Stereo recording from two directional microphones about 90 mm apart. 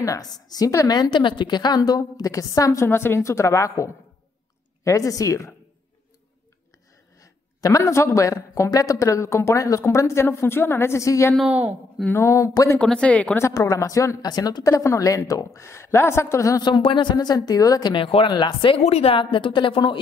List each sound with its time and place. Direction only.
0.0 s a woman's voice: 45° left (ahead or behind)
7.2 s speech: 40° left (ahead or behind)
11.4 s a woman's voice: 20° right (ahead or behind)
12.1 s speech: 30° left (ahead or behind)
12.8 s a woman's voice: 10° left (ahead or behind)
13.5 s a woman's voice: 40° left (ahead or behind)
14.6 s speech: 35° left (ahead or behind)
16.6 s a woman's voice: 60° left (ahead or behind); by 17.9 s 45° left (ahead or behind)
17.9 s a woman's voice: 75° left (ahead or behind)